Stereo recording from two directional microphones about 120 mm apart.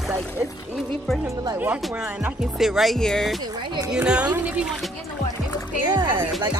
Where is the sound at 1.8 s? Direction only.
5° right (ahead or behind).